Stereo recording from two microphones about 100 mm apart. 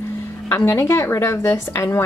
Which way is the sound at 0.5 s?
25° left (ahead or behind).